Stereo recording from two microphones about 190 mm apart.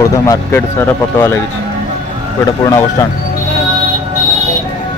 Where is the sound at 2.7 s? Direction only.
15° left (ahead or behind).